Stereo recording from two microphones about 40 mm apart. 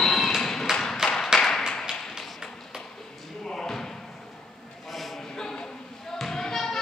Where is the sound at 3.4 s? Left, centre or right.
Centre.